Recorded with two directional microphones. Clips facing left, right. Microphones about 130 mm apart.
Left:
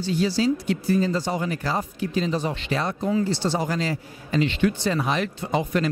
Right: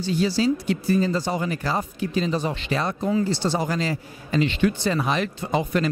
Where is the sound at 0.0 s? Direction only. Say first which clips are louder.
Right 1 dB; 15° right (ahead or behind).